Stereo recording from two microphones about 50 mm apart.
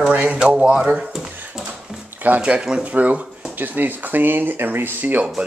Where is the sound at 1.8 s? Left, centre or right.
Centre.